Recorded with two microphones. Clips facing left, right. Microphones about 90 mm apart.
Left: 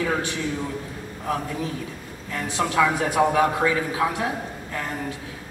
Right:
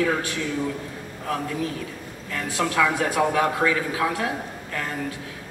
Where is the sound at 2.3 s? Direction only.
20° left (ahead or behind).